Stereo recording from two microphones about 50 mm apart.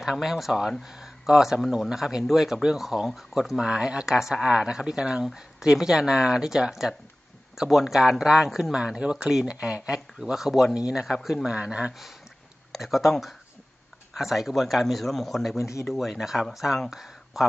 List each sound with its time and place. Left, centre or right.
0.2 s speech: centre
3.6 s speech: centre
9.9 s speech: centre
12.7 s speech: centre
14.1 s speech: centre
15.5 s speech: left
15.9 s speech: centre